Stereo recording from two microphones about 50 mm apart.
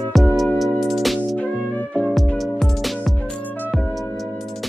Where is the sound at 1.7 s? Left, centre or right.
Left.